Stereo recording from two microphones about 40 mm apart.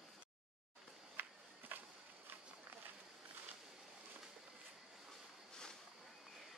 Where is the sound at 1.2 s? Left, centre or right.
Right.